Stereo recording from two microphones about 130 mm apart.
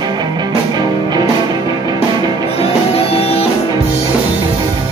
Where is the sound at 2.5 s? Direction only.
50° left (ahead or behind).